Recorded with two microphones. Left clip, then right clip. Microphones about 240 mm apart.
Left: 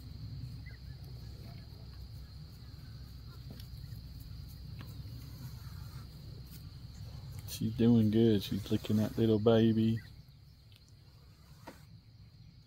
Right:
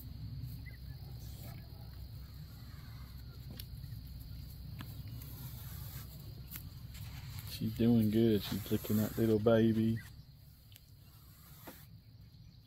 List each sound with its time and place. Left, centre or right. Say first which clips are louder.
7.4 s speech: left 3 dB; left